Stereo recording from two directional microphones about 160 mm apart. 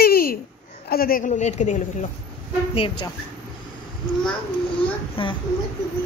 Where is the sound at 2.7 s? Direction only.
30° left (ahead or behind).